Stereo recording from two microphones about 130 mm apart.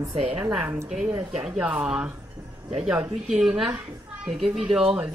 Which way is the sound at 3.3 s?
5° right (ahead or behind).